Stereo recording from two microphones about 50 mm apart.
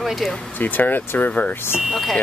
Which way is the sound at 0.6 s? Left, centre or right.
Left.